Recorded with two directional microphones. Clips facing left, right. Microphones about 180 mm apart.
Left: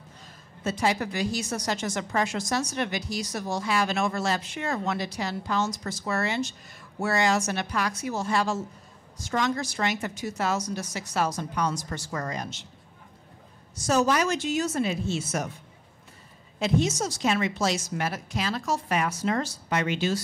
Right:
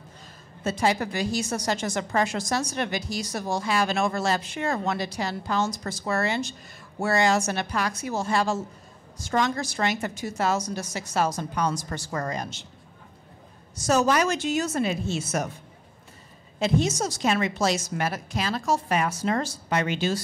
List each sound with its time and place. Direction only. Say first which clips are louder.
0.7 s a woman's voice: right 2 dB; 30° right (ahead or behind)
13.8 s speech: right 2 dB; 45° right (ahead or behind)
16.5 s a woman's voice: right 1 dB; 30° right (ahead or behind)